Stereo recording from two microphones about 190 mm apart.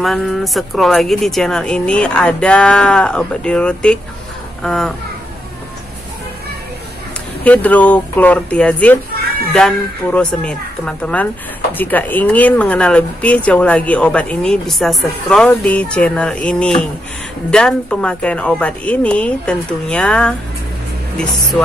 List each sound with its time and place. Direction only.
0.0 s speech: centre (ahead or behind)
7.4 s speech: 10° left (ahead or behind)